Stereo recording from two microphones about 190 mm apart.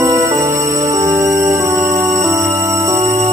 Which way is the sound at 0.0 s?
15° right (ahead or behind).